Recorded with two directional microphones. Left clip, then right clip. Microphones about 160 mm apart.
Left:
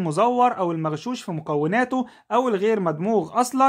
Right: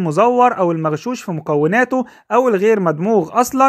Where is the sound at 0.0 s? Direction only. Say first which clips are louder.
Right 6 dB; 30° right (ahead or behind).